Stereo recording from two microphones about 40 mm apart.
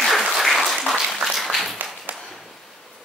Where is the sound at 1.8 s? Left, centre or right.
Right.